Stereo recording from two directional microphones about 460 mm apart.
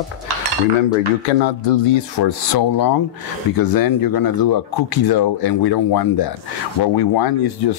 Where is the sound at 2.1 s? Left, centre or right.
Left.